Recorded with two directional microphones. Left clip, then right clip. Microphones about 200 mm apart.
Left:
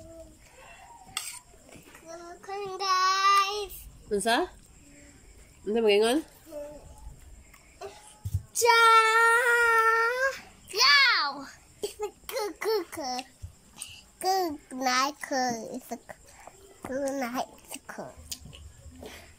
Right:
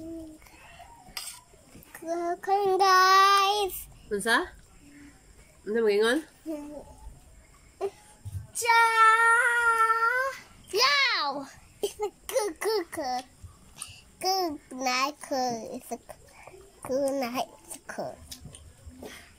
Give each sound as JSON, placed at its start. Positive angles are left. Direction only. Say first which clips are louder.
{"t": 2.0, "sound": "child singing", "louder": "right 13 dB", "side_deg": -45}
{"t": 4.1, "sound": "speech", "louder": "even", "side_deg": 5}
{"t": 5.7, "sound": "speech", "louder": "left 1 dB", "side_deg": 5}
{"t": 8.5, "sound": "child singing", "louder": "left 2 dB", "side_deg": 25}
{"t": 10.7, "sound": "a sound", "louder": "left 3 dB", "side_deg": -15}
{"t": 13.7, "sound": "a child's voice", "louder": "even", "side_deg": 0}